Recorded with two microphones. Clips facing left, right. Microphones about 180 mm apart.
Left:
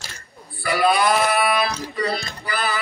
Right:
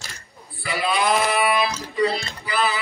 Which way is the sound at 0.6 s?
45° left (ahead or behind).